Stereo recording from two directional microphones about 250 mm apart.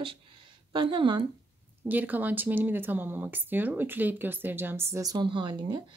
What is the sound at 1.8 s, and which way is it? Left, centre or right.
Speech, centre.